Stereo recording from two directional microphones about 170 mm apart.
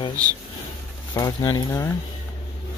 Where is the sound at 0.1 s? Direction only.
20° right (ahead or behind).